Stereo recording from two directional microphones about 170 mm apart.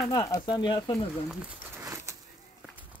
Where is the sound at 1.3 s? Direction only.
15° right (ahead or behind).